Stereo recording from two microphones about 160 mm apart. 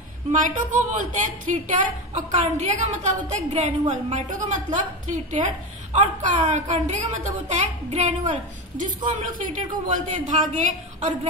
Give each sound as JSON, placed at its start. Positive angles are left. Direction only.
{"t": 0.3, "sound": "a woman's voice", "side_deg": -55}